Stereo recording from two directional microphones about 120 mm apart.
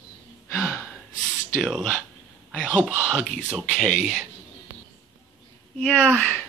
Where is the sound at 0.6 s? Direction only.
15° left (ahead or behind).